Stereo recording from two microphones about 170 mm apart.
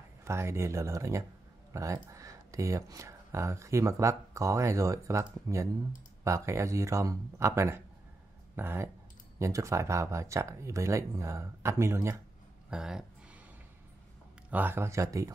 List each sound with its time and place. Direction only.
0.2 s speech: 15° right (ahead or behind)
12.6 s speech: 5° right (ahead or behind)
14.5 s speech: 10° right (ahead or behind)